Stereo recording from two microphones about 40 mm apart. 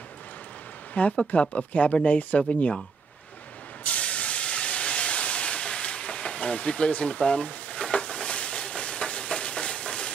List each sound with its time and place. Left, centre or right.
0.9 s speech: left
3.8 s steam: left